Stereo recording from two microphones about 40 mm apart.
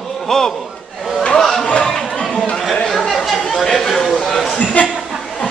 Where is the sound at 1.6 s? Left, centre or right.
Left.